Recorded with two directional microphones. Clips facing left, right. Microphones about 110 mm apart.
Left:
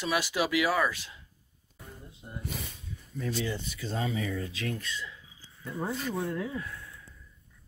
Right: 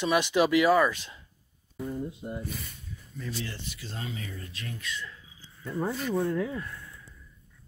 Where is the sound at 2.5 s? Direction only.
90° left.